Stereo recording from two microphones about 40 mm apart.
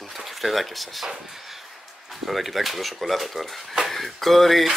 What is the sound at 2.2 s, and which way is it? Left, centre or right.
Speech, centre.